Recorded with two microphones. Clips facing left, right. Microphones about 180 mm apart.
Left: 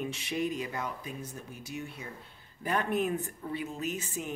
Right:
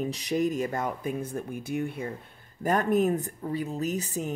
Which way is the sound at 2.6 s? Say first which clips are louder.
Right 6 dB; 45° right (ahead or behind).